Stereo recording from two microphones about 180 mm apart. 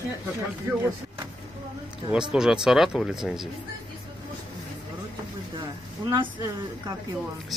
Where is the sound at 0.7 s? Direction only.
10° right (ahead or behind).